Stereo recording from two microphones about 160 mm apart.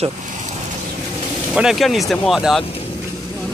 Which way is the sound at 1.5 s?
Centre (ahead or behind).